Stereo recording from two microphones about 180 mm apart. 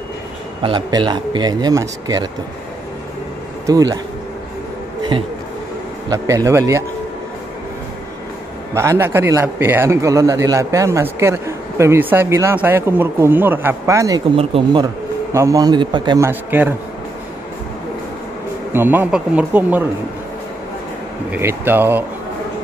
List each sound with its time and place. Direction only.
0.6 s speech: 25° right (ahead or behind)
3.6 s speech: 20° right (ahead or behind)
6.0 s a man's voice: 15° right (ahead or behind)
8.7 s a man's voice: 15° right (ahead or behind)
14.3 s speech: 30° right (ahead or behind)
15.3 s speech: 20° right (ahead or behind)
16.3 s a man's voice: 10° right (ahead or behind)
18.7 s a man's voice: 10° right (ahead or behind)
21.3 s a man's voice: 10° right (ahead or behind)